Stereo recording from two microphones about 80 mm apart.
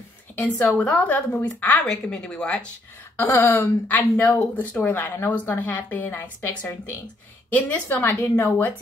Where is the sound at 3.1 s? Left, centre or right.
Left.